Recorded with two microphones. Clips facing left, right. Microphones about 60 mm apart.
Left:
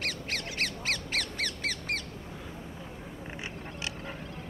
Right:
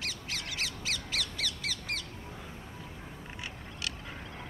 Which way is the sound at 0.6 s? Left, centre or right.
Left.